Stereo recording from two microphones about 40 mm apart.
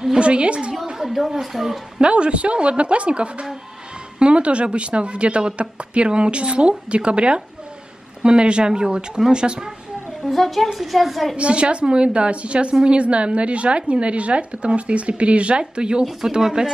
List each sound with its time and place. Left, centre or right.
0.2 s a woman's voice: right
1.0 s speech: centre
2.0 s a woman's voice: right
10.3 s speech: centre
11.3 s a woman's voice: right